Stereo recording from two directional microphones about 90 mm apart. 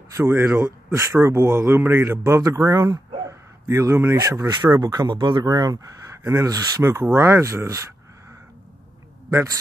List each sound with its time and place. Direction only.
0.1 s a man's voice: 30° right (ahead or behind)
4.8 s a man's voice: 50° right (ahead or behind); by 8.4 s 30° right (ahead or behind)